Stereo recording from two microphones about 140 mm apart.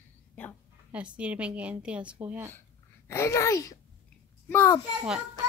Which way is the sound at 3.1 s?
20° left (ahead or behind).